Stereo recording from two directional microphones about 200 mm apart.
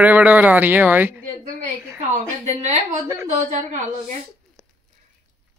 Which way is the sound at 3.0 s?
10° right (ahead or behind).